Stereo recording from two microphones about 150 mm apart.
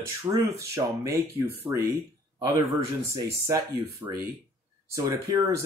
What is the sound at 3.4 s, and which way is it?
Speech, 25° right (ahead or behind).